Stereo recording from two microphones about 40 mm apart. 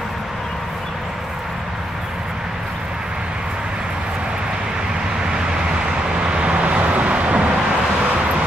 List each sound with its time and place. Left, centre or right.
6.3 s vehicle: right